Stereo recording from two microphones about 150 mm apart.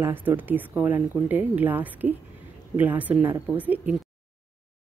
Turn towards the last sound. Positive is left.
turn(degrees=-10)  # may be behind; listen again after turning